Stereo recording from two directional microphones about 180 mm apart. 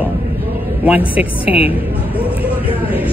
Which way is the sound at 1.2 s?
10° right (ahead or behind).